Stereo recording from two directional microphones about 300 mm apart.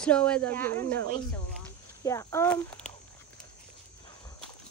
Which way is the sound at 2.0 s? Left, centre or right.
Centre.